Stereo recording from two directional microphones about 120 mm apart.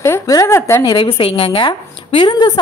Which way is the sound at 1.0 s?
50° left (ahead or behind).